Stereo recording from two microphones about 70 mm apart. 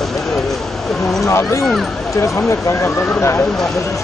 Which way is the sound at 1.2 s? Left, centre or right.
Left.